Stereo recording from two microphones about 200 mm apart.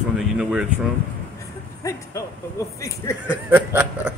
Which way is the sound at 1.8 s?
15° left (ahead or behind).